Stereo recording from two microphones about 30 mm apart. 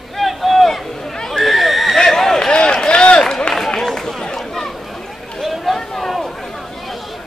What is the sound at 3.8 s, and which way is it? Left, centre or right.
Run, centre.